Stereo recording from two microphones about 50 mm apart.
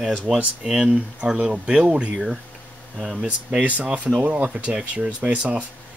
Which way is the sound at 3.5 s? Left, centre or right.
Right.